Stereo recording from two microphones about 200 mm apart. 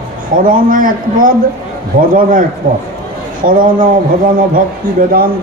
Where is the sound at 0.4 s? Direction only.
45° right (ahead or behind).